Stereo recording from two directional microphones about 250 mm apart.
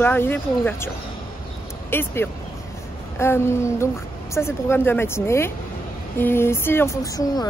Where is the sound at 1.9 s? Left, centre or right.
Centre.